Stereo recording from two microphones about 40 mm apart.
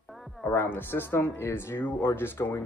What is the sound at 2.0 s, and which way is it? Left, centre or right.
Speech, left.